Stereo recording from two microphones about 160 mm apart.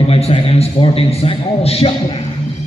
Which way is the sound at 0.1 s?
35° left (ahead or behind).